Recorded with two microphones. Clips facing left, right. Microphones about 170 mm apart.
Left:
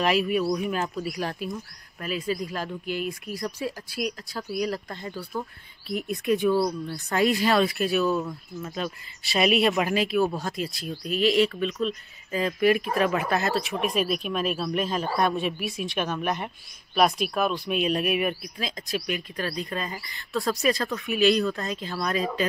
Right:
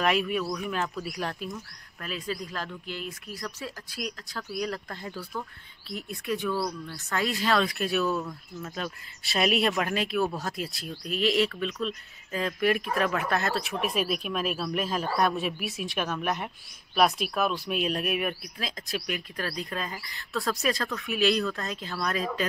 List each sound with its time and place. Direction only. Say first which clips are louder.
0.0 s speech: left 3 dB; 5° left (ahead or behind)
0.4 s speech: left 6 dB; 30° left (ahead or behind)
1.0 s speech: left 3 dB; 5° left (ahead or behind)
5.9 s speech: left 7 dB; 15° left (ahead or behind); by 22.4 s centre (ahead or behind)